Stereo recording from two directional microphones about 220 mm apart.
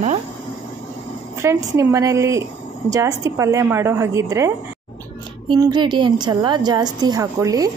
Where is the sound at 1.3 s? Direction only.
15° right (ahead or behind).